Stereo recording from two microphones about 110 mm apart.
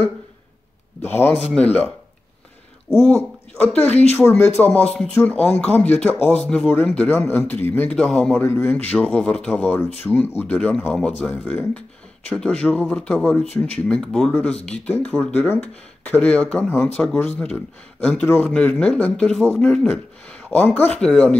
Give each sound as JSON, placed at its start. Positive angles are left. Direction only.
{"t": 1.0, "sound": "speech", "side_deg": 20}
{"t": 2.9, "sound": "speech", "side_deg": 20}
{"t": 7.1, "sound": "speech", "side_deg": 20}
{"t": 8.0, "sound": "a man's voice", "side_deg": 5}
{"t": 8.4, "sound": "speech", "side_deg": 20}
{"t": 18.2, "sound": "speech", "side_deg": 20}